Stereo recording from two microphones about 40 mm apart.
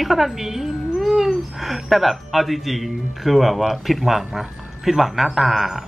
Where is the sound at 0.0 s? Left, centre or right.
Centre.